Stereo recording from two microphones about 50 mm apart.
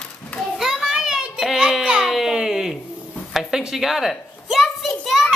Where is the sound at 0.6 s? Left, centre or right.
Centre.